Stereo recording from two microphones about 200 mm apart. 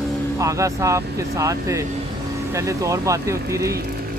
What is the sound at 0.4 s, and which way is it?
Speech, 15° right (ahead or behind).